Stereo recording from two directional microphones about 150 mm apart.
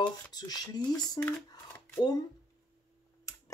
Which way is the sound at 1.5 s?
30° left (ahead or behind).